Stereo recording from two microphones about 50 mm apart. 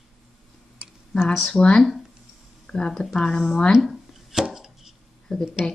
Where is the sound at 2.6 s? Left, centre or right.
Centre.